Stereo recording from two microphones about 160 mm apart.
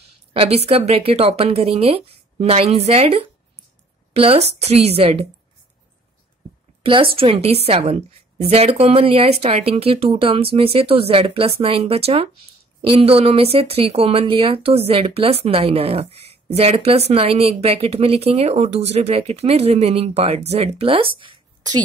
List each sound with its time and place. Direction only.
0.3 s a woman's voice: 40° right (ahead or behind)
6.8 s a woman's voice: 35° right (ahead or behind)